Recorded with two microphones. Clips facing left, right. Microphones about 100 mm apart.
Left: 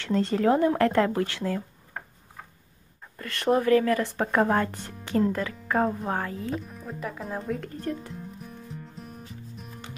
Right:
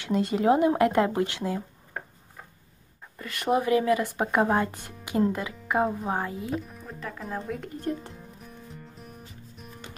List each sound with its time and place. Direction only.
0.0 s speech: 15° right (ahead or behind)
3.2 s speech: 5° right (ahead or behind)
6.6 s speech: 5° left (ahead or behind)
7.8 s speech: 20° right (ahead or behind)
8.5 s music: centre (ahead or behind)